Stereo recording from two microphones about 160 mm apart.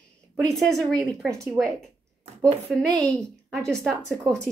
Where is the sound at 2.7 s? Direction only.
5° right (ahead or behind).